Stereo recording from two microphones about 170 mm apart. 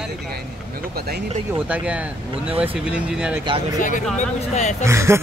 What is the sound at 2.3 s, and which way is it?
Speech, 35° right (ahead or behind).